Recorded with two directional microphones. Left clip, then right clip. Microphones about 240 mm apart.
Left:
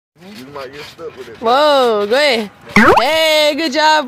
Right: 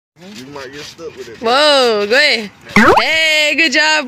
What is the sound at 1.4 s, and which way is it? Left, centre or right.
Speech, centre.